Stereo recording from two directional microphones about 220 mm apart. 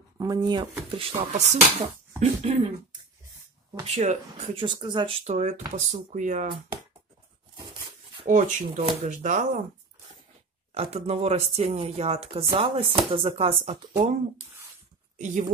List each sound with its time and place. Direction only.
0.2 s speech: 20° right (ahead or behind)
3.8 s speech: 30° right (ahead or behind)
8.3 s speech: 35° right (ahead or behind)
10.7 s speech: 30° right (ahead or behind)
15.1 s speech: 35° right (ahead or behind)